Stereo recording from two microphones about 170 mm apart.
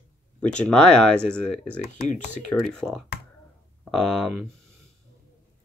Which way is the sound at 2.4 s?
5° left (ahead or behind).